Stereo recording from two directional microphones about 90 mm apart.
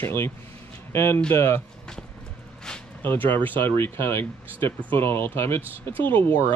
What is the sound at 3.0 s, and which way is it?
Speech, 20° left (ahead or behind).